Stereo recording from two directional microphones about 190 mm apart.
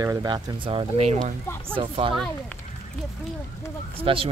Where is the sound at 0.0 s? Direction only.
20° right (ahead or behind).